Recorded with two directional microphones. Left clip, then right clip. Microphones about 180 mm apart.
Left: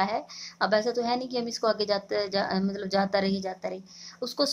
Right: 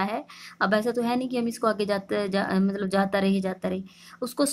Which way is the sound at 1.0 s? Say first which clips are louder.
Right 1 dB; 55° right (ahead or behind).